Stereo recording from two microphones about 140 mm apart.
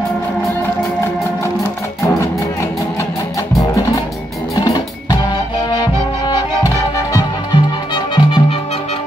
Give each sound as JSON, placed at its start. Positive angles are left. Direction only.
{"t": 4.6, "sound": "music", "side_deg": 30}